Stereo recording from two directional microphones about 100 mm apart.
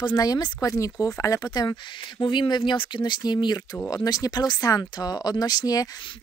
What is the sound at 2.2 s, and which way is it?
A woman's voice, 50° left (ahead or behind).